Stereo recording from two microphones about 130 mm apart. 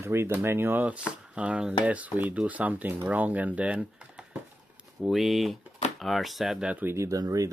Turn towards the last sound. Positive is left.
turn(degrees=-25)  # may be behind; listen again after turning